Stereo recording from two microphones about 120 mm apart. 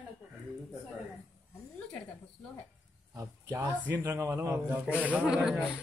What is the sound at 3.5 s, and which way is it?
Speech, 15° right (ahead or behind).